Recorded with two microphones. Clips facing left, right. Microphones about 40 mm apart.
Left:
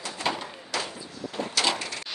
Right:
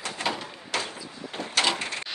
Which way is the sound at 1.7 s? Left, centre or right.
Right.